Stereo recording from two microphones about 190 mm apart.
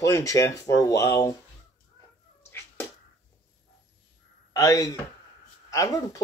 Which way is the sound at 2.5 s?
10° left (ahead or behind).